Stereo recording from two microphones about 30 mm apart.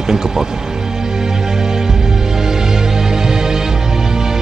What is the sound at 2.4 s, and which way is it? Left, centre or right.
Music, centre.